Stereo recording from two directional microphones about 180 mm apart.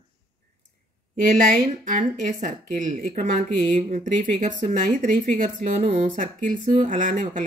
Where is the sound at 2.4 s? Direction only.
45° right (ahead or behind).